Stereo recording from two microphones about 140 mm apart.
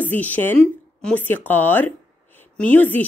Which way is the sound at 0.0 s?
10° left (ahead or behind).